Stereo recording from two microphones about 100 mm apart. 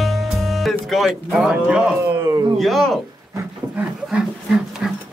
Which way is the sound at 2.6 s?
Centre (ahead or behind).